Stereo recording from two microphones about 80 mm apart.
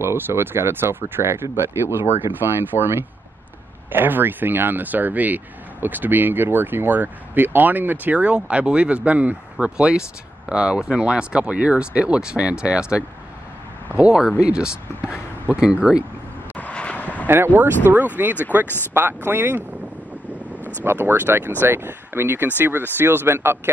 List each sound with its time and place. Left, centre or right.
0.0 s speech: right; by 16.0 s centre
16.5 s vehicle: centre
17.3 s speech: right
20.8 s speech: right